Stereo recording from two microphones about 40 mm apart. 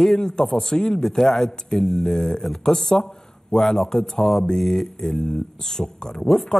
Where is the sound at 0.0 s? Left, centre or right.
Centre.